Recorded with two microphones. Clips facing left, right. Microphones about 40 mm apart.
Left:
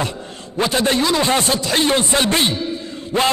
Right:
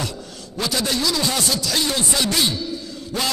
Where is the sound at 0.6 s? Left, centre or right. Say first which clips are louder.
Left 6 dB; left.